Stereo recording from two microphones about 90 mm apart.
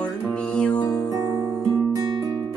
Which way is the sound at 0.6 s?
15° left (ahead or behind).